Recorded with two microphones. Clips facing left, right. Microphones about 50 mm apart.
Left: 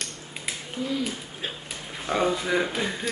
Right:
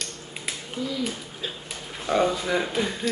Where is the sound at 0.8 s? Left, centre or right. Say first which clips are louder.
Left 1 dB; left.